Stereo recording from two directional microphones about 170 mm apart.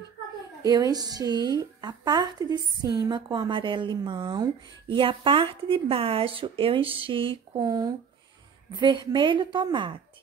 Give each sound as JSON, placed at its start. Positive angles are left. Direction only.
{"t": 0.6, "sound": "a woman's voice", "side_deg": -20}